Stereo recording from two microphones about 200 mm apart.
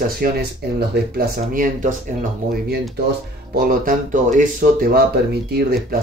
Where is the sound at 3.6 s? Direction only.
45° right (ahead or behind).